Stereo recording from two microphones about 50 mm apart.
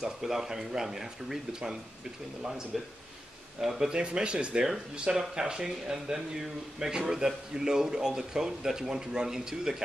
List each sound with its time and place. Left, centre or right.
0.0 s speech: centre
3.9 s speech: centre